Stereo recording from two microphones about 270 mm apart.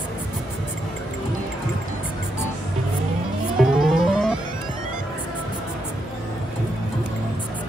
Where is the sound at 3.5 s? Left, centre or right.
Centre.